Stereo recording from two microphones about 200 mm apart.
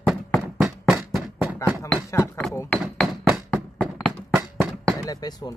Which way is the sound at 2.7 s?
5° right (ahead or behind).